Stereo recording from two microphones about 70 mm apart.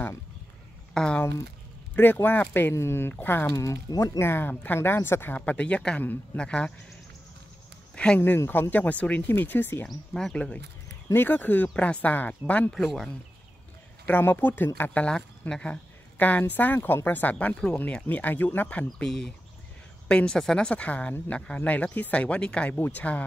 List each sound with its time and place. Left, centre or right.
0.9 s speech: centre
2.2 s speech: left
2.7 s speech: left
3.5 s speech: left
3.9 s speech: left
4.2 s speech: left; by 6.7 s centre
7.9 s a sound: centre
8.5 s speech: left
9.8 s speech: centre
11.1 s speech: left
12.7 s speech: centre
14.0 s speech: left
18.9 s speech: centre; by 23.2 s left